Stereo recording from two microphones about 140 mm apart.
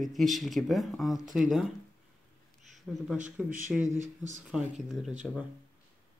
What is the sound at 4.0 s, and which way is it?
Speech, 60° right (ahead or behind).